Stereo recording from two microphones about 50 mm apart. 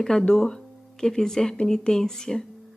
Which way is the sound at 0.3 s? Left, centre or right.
Centre.